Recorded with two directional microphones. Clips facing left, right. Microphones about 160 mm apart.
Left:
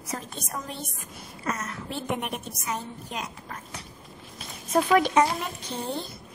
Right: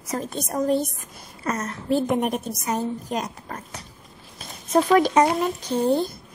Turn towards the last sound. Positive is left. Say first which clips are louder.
# right 11 dB
turn(degrees=-45)  # may be behind; listen again after turning